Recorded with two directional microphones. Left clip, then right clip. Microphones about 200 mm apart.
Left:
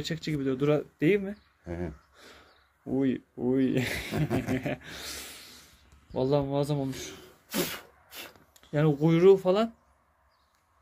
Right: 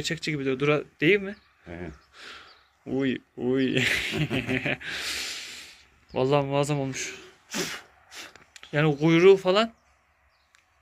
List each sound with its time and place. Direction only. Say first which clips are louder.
0.0 s speech: right 3 dB; 5° left (ahead or behind)
7.4 s a sound: right 1 dB; 65° left (ahead or behind)
8.5 s speech: right 2 dB; 5° left (ahead or behind)